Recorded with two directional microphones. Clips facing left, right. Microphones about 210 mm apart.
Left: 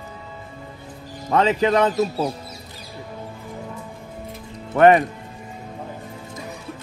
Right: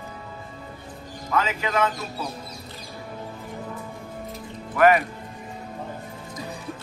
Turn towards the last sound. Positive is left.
turn(degrees=30)  # may be behind; listen again after turning